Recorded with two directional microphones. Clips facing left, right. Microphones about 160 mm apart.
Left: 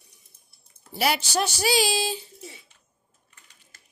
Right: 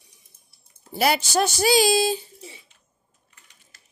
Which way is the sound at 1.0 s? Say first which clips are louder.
Right 4 dB; 45° right (ahead or behind).